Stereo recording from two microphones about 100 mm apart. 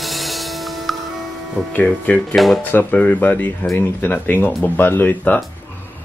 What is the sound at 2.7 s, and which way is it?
Speech, 15° left (ahead or behind).